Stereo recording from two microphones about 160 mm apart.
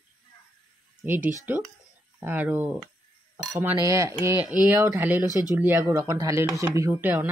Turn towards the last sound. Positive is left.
turn(degrees=-15)  # may be behind; listen again after turning